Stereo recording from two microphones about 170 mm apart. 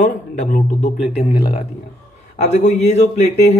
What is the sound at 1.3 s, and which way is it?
Speech, 30° left (ahead or behind).